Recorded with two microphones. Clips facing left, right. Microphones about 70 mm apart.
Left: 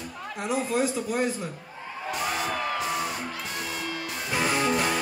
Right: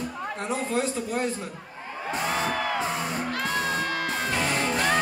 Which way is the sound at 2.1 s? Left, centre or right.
Right.